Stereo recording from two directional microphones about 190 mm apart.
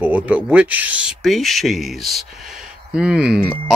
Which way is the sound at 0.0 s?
10° right (ahead or behind).